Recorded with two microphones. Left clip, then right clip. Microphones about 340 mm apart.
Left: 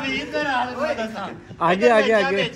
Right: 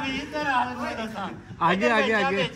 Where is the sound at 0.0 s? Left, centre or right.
Centre.